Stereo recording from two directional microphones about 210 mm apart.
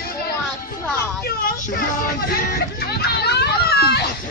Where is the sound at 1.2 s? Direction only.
40° left (ahead or behind).